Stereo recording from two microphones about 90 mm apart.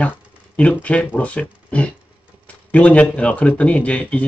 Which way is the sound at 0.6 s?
15° left (ahead or behind).